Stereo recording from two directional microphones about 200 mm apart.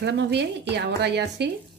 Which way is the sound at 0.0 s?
60° right (ahead or behind).